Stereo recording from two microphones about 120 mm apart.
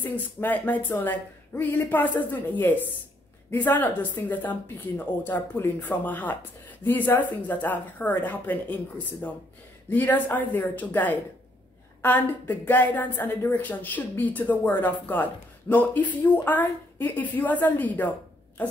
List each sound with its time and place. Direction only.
0.0 s a woman's voice: 15° left (ahead or behind)